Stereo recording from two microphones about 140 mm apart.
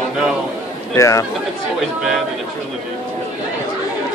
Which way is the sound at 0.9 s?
20° left (ahead or behind).